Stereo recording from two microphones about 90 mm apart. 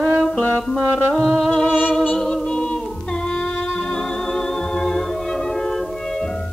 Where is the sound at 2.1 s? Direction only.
10° left (ahead or behind).